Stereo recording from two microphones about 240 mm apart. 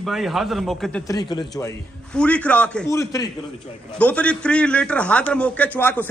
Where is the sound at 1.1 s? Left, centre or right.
Centre.